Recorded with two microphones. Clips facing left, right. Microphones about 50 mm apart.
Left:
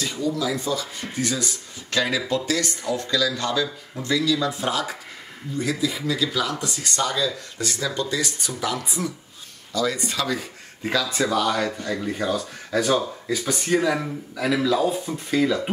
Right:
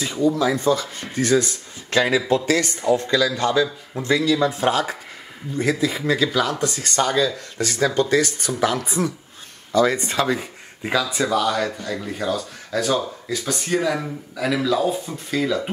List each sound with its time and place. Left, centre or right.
0.2 s a man's voice: right
10.8 s speech: centre